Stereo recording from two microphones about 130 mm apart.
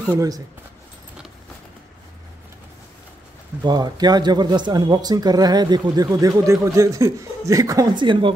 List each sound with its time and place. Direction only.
0.0 s speech: 25° right (ahead or behind)
3.6 s speech: 30° right (ahead or behind)